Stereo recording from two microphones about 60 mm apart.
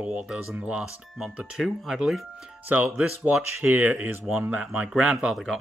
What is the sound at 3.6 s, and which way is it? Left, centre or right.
Speech, right.